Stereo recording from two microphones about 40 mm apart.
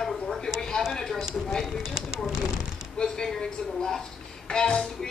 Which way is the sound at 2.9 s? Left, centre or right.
Centre.